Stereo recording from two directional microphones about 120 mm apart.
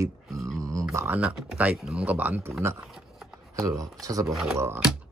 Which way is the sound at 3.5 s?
30° right (ahead or behind).